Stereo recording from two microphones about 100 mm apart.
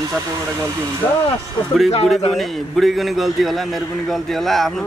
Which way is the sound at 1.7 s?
Centre (ahead or behind).